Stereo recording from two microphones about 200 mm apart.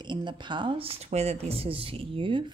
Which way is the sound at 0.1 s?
25° right (ahead or behind).